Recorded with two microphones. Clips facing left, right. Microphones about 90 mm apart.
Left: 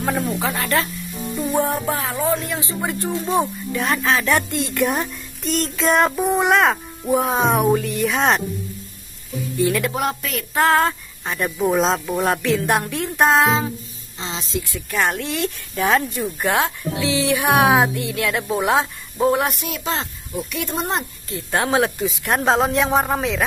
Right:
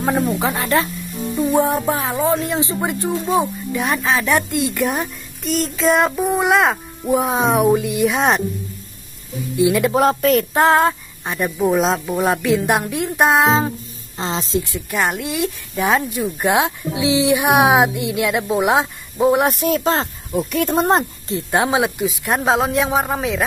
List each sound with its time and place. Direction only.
0.4 s speech: 20° right (ahead or behind)
1.9 s speech: 20° right (ahead or behind)
9.6 s speech: 15° right (ahead or behind)
9.9 s speech: 35° right (ahead or behind)
10.5 s speech: 20° right (ahead or behind)
14.1 s speech: 40° right (ahead or behind)
14.6 s speech: 20° right (ahead or behind)
15.0 s speech: 5° right (ahead or behind)
19.4 s speech: 35° right (ahead or behind)
21.3 s speech: 20° right (ahead or behind); by 23.4 s centre (ahead or behind)